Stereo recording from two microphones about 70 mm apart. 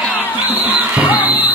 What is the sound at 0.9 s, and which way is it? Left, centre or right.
Music, right.